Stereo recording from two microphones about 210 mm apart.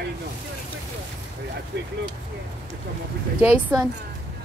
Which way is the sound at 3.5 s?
10° right (ahead or behind).